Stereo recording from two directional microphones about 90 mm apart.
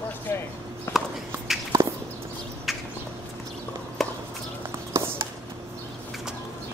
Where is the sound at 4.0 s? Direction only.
Centre (ahead or behind).